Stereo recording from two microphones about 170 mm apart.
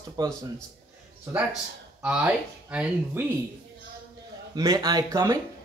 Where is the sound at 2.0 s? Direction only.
10° right (ahead or behind).